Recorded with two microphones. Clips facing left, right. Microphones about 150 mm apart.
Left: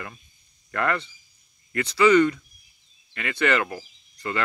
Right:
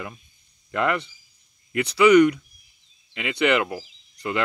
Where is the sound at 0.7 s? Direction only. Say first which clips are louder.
Right 2 dB; 15° right (ahead or behind).